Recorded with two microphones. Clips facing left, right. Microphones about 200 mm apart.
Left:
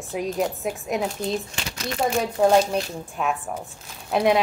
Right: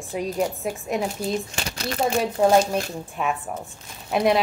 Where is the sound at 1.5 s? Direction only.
40° right (ahead or behind).